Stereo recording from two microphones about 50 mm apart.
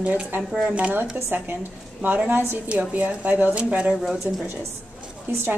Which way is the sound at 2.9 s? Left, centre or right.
Right.